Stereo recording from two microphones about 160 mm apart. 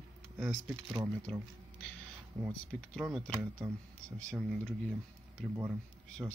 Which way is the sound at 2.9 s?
Centre (ahead or behind).